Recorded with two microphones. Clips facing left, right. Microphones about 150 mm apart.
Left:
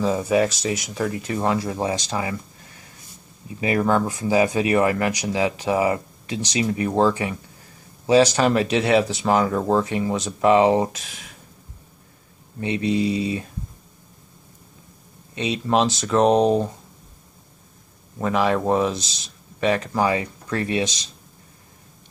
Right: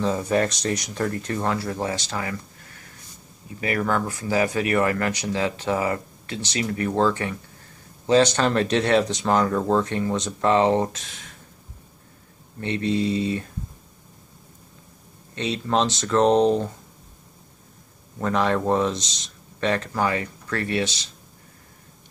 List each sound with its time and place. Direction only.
0.0 s speech: 5° left (ahead or behind)
3.6 s speech: 20° left (ahead or behind)
12.5 s speech: 10° left (ahead or behind)
15.3 s speech: 10° left (ahead or behind)
18.2 s speech: 5° left (ahead or behind)